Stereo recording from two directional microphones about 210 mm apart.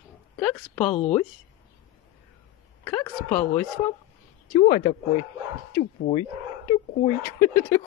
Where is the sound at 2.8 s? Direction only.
5° left (ahead or behind).